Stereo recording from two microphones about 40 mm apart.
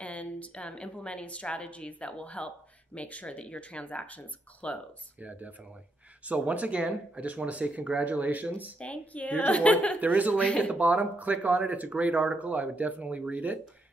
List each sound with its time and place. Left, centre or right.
0.0 s speech: left
6.2 s speech: right
8.7 s speech: left
9.9 s speech: right
10.3 s speech: left
10.7 s speech: right